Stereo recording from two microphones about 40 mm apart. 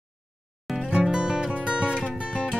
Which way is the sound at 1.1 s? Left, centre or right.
Right.